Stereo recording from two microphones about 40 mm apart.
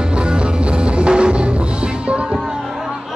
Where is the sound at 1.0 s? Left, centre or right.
Right.